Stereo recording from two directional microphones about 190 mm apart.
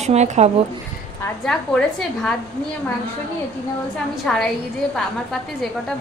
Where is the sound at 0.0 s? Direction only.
35° right (ahead or behind).